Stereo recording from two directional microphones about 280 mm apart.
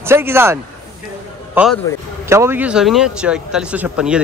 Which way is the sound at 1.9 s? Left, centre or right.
Centre.